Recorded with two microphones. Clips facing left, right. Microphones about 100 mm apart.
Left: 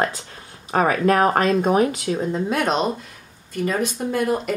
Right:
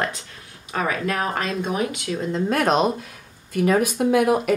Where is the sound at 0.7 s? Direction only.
40° left (ahead or behind).